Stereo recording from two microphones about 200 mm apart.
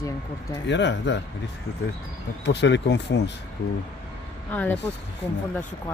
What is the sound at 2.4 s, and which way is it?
Speech, 60° left (ahead or behind).